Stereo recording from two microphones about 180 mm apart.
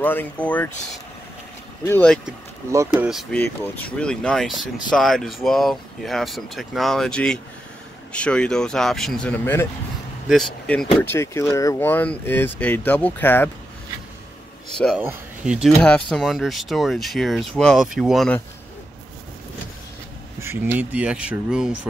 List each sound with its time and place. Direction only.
0.0 s speech: 10° left (ahead or behind)
1.9 s speech: 10° left (ahead or behind)
2.7 s speech: 15° right (ahead or behind)
3.1 s speech: centre (ahead or behind)
3.3 s speech: 10° left (ahead or behind)
10.2 s speech: centre (ahead or behind)
15.0 s speech: 5° right (ahead or behind)
20.3 s speech: 10° right (ahead or behind)